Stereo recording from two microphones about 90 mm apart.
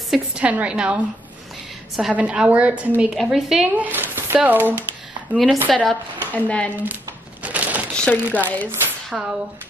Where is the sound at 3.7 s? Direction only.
20° right (ahead or behind).